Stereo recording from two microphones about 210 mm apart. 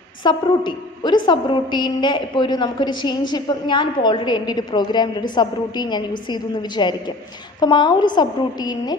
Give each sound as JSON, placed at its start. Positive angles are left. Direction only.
{"t": 0.2, "sound": "a woman's voice", "side_deg": 20}